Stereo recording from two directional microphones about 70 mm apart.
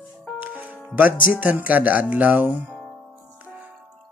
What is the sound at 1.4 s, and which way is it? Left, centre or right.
Speech, right.